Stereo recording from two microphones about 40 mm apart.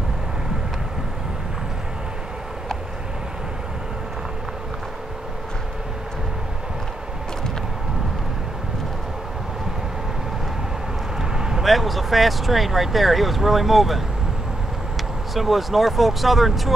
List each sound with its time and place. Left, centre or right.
11.1 s vehicle: centre
11.6 s speech: centre
15.3 s speech: centre